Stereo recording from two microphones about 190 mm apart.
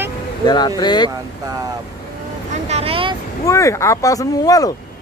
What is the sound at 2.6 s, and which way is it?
Vehicle, 35° right (ahead or behind).